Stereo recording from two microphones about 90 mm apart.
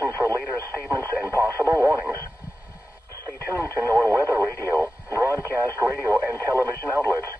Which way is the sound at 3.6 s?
20° left (ahead or behind).